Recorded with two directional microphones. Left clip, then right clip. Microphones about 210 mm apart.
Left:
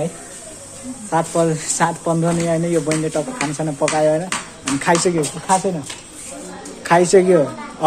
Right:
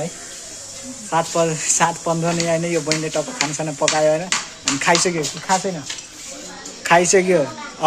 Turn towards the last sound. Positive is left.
turn(degrees=-10)  # may be behind; listen again after turning